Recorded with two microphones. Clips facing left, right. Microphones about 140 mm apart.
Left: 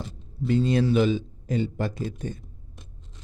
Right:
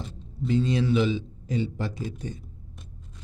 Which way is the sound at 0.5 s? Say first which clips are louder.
Left 2 dB; 50° left (ahead or behind).